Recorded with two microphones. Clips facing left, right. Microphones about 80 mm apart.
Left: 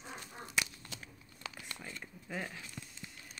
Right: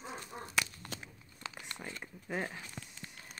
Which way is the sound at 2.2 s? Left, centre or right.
Right.